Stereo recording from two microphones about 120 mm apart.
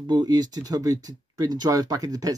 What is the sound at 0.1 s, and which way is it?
Speech, 35° right (ahead or behind).